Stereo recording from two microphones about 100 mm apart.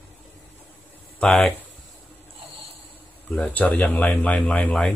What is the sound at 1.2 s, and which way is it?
Speech, 10° left (ahead or behind).